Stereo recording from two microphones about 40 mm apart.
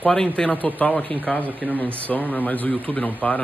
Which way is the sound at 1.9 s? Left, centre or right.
Left.